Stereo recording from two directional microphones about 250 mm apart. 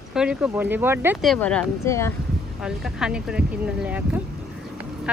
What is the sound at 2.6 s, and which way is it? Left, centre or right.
Speech, centre.